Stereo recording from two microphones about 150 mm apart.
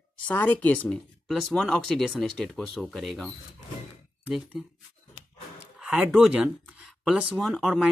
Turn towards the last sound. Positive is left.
turn(degrees=0)  # may be behind; listen again after turning